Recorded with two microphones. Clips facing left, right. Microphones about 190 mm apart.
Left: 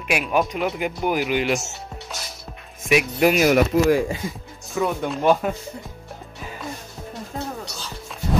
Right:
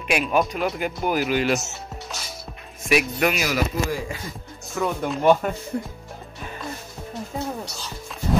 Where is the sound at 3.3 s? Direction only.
45° left (ahead or behind).